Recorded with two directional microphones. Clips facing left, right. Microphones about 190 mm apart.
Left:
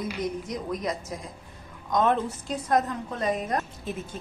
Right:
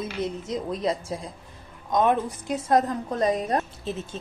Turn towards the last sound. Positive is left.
turn(degrees=-25)  # may be behind; listen again after turning